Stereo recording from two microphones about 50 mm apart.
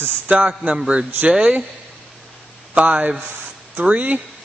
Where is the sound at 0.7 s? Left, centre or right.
Centre.